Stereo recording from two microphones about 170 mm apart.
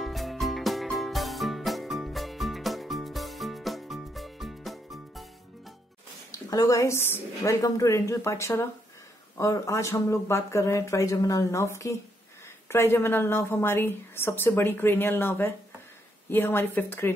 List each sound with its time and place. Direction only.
0.0 s music: centre (ahead or behind)
6.3 s a woman's voice: 20° left (ahead or behind)